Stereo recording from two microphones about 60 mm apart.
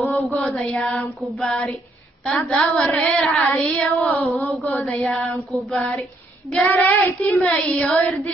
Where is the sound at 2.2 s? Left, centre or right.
Centre.